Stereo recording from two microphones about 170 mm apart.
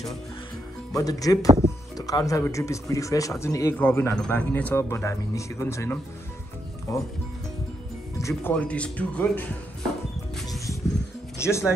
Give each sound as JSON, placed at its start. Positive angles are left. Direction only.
{"t": 0.9, "sound": "speech", "side_deg": 20}
{"t": 8.2, "sound": "speech", "side_deg": 15}
{"t": 11.3, "sound": "speech", "side_deg": 15}